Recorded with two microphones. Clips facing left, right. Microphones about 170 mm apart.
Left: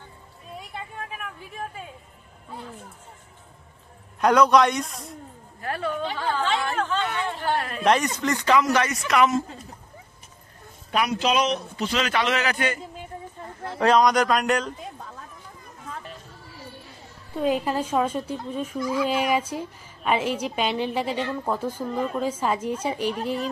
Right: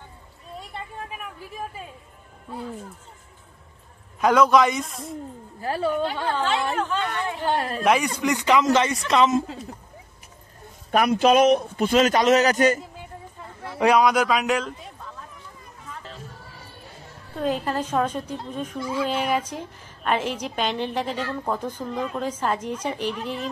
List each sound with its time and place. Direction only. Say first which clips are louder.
0.6 s a sound: right 1 dB; centre (ahead or behind)
4.2 s speech: even; centre (ahead or behind)
5.6 s a woman's voice: right 4 dB; 30° right (ahead or behind)
5.9 s speech: right 3 dB; centre (ahead or behind)
7.3 s a woman's voice: right 3 dB; 20° right (ahead or behind)
7.8 s speech: even; 10° right (ahead or behind); by 9.4 s 25° right (ahead or behind)
10.9 s a man's voice: right 5 dB; 50° right (ahead or behind)
13.7 s speech: even; 10° right (ahead or behind)
17.4 s a woman's voice: left 1 dB; 10° left (ahead or behind)
18.8 s speech: left 2 dB; 30° right (ahead or behind)
19.0 s a woman's voice: left 1 dB; 10° left (ahead or behind)
23.1 s speech: left 3 dB; 40° left (ahead or behind)